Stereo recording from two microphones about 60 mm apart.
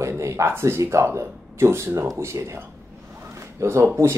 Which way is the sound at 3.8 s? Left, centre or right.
Right.